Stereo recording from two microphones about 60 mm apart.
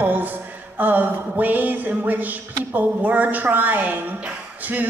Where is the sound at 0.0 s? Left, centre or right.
Right.